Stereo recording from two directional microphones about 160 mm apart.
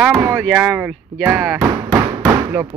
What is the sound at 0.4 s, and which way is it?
Speech, centre (ahead or behind).